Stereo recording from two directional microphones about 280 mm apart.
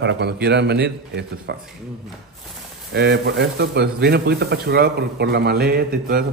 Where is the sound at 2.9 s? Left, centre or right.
Right.